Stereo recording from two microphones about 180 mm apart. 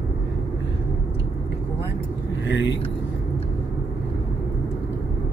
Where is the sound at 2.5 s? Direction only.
85° left.